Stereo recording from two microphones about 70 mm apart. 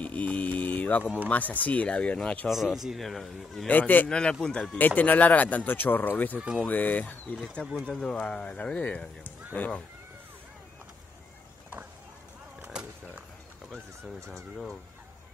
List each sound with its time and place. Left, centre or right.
0.0 s mantra: left
1.3 s speech: left
2.4 s speech: centre
3.6 s speech: left
4.1 s speech: centre
4.7 s speech: left
7.3 s speech: centre
12.6 s a sound: centre